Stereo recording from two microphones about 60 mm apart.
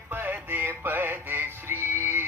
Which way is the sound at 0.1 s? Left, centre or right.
Right.